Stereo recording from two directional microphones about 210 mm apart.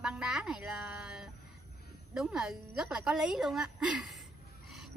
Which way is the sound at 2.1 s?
5° right (ahead or behind).